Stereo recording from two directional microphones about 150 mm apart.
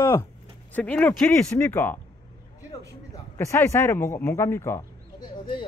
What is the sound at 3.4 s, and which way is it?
Speech, 15° left (ahead or behind).